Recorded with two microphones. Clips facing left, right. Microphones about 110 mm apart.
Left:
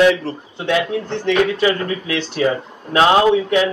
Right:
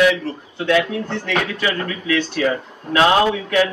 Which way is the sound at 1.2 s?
25° left (ahead or behind).